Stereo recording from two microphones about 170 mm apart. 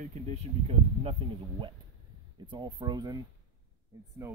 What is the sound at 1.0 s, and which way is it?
Speech, 30° right (ahead or behind).